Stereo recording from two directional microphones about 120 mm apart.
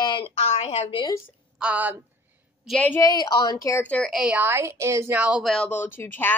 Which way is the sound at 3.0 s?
30° left (ahead or behind).